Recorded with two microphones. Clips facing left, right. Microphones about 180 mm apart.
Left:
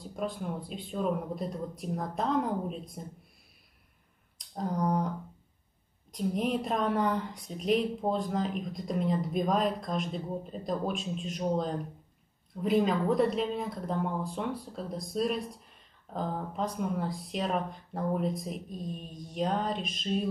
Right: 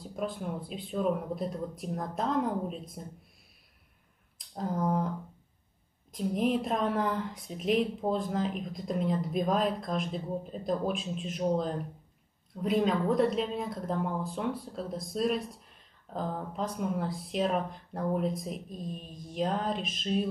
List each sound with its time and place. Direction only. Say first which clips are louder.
0.0 s a woman's voice: even; centre (ahead or behind)
4.4 s speech: even; centre (ahead or behind)
6.1 s a woman's voice: right 1 dB; centre (ahead or behind)